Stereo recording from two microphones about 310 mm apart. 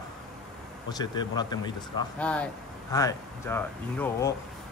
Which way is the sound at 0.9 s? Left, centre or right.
Centre.